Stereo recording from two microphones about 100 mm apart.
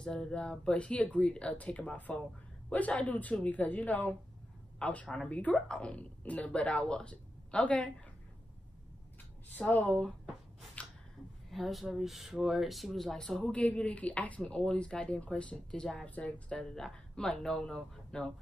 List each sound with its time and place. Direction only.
0.0 s speech: 10° left (ahead or behind)
9.5 s speech: 15° left (ahead or behind)
10.8 s finger snapping: 10° left (ahead or behind)
11.5 s speech: centre (ahead or behind)